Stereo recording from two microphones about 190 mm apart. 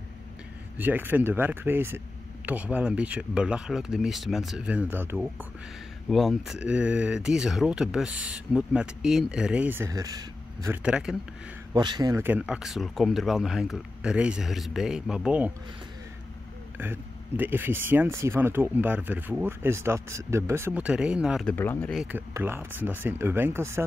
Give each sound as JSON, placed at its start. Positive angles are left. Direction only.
{"t": 0.7, "sound": "speech", "side_deg": -10}
{"t": 11.7, "sound": "a man's voice", "side_deg": -20}
{"t": 12.2, "sound": "speech", "side_deg": -10}
{"t": 16.7, "sound": "speech", "side_deg": -10}
{"t": 21.5, "sound": "speech", "side_deg": 10}
{"t": 21.9, "sound": "speech", "side_deg": -10}